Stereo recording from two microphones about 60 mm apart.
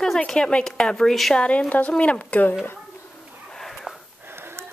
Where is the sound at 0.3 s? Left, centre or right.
Centre.